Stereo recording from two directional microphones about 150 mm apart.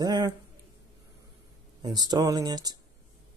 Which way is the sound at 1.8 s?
25° right (ahead or behind).